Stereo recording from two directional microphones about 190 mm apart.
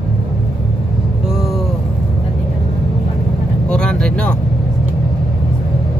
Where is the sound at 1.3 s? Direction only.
Centre (ahead or behind).